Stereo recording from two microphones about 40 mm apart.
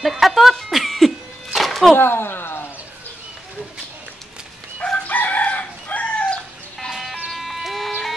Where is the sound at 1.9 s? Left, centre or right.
Left.